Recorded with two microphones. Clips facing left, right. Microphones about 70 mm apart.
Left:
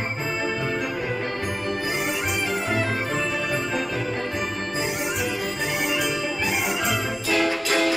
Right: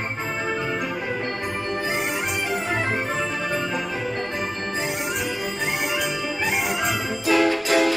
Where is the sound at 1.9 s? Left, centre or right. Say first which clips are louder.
Even; centre.